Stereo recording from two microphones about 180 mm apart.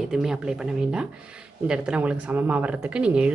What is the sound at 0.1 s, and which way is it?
Speech, 5° right (ahead or behind).